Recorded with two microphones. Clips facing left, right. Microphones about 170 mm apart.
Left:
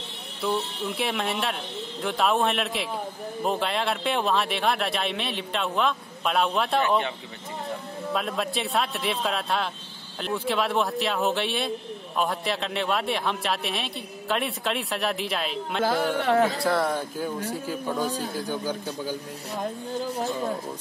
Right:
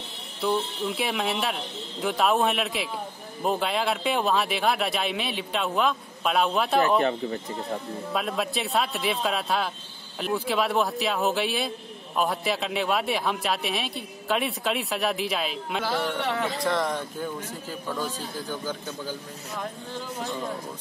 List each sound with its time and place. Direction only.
0.4 s speech: centre (ahead or behind)
7.0 s speech: 45° right (ahead or behind)
8.1 s speech: centre (ahead or behind)
16.2 s speech: 45° left (ahead or behind)
16.6 s speech: 5° left (ahead or behind)